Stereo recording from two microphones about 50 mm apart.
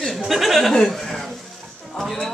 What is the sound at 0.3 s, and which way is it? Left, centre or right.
Speech, centre.